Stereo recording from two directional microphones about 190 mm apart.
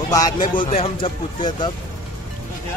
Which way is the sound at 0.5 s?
30° left (ahead or behind).